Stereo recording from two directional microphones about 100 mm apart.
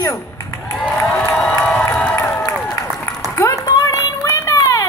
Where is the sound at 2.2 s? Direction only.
25° left (ahead or behind).